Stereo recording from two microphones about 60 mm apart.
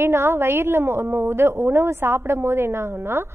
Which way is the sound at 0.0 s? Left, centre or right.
Right.